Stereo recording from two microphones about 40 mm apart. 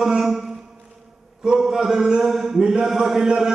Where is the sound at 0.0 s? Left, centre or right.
Centre.